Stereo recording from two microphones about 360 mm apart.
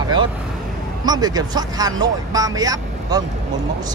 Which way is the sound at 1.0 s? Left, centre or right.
Centre.